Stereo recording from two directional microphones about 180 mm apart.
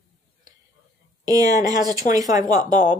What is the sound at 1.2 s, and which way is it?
Speech, 20° right (ahead or behind).